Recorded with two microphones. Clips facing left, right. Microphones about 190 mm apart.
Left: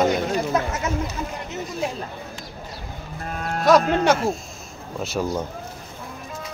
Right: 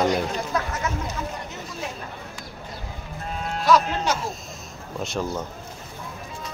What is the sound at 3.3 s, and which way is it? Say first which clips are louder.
Speech: left 3 dB; 55° left (ahead or behind).